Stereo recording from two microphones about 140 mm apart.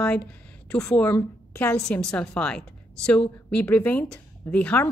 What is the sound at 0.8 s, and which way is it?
A woman's voice, 15° left (ahead or behind).